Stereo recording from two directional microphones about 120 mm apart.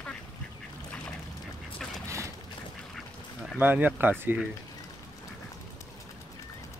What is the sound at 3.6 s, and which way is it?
Speech, 15° right (ahead or behind).